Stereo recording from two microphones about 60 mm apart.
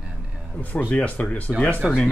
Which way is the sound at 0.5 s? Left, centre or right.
Left.